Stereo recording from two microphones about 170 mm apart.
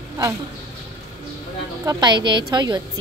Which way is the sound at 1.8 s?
25° right (ahead or behind).